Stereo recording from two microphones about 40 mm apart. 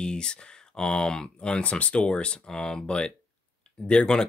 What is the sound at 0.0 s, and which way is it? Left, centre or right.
Speech, centre.